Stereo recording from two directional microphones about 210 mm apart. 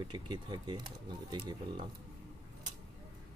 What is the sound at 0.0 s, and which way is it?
Speech, 20° right (ahead or behind).